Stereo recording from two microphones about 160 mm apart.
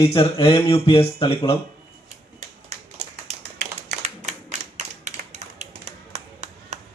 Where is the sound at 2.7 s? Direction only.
45° right (ahead or behind).